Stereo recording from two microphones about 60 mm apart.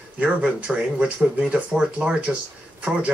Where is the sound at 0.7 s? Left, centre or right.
Centre.